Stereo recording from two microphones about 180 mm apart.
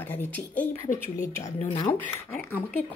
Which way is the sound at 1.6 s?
30° left (ahead or behind).